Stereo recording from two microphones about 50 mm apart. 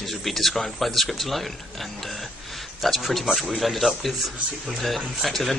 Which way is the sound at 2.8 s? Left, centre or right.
Centre.